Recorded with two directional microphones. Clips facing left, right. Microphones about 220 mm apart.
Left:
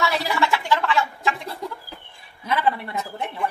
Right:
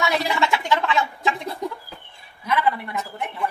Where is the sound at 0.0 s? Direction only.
15° right (ahead or behind).